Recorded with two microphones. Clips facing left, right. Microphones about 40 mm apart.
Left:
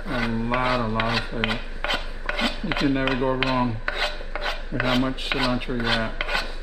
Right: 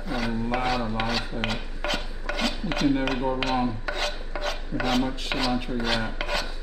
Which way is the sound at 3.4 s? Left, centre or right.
Left.